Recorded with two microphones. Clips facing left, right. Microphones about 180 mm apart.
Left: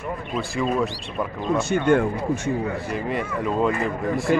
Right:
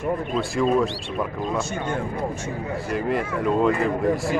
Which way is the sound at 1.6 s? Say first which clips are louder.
Left 8 dB; 65° left (ahead or behind).